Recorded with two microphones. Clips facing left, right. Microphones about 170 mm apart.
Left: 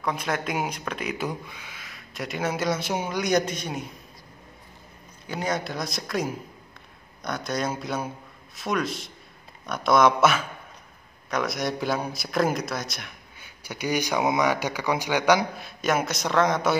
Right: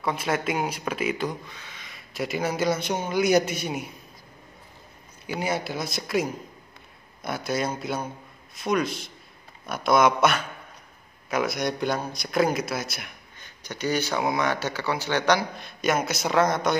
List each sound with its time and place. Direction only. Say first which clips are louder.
0.0 s speech: right 2 dB; 5° right (ahead or behind)
1.1 s speech: right 1 dB; 10° left (ahead or behind); by 3.8 s 10° right (ahead or behind)
5.2 s speech: even; 5° right (ahead or behind)
13.4 s speech: right 1 dB; 10° left (ahead or behind)